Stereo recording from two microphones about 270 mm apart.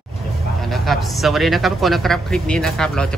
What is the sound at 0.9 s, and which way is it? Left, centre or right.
Speech, centre.